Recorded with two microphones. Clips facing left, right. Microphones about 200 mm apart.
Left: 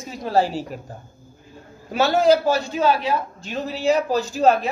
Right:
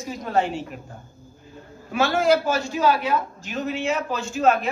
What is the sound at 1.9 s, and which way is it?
A woman's voice, 35° left (ahead or behind).